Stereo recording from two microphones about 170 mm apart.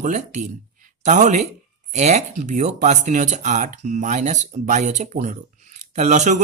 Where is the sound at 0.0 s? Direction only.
45° right (ahead or behind).